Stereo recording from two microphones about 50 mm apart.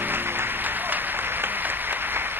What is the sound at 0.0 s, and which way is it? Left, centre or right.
Applause, right.